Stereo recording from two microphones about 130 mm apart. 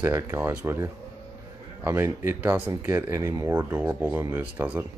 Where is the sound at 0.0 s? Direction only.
20° right (ahead or behind).